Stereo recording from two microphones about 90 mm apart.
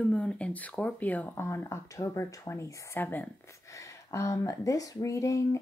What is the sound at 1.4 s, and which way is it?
Speech, 30° left (ahead or behind).